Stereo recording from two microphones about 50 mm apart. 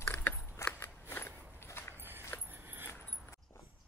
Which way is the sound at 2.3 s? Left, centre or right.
Left.